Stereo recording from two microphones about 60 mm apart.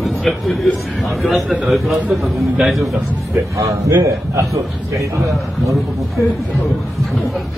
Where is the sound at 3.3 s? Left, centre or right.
Right.